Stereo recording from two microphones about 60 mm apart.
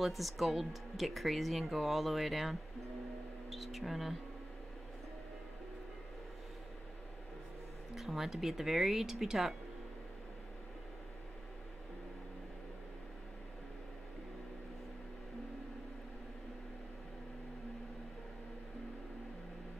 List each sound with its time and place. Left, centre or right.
0.0 s speech: centre
7.9 s speech: centre